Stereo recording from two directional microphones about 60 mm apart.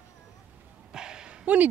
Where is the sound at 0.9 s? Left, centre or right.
Centre.